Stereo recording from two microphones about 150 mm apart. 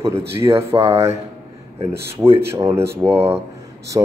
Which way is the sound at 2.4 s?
15° right (ahead or behind).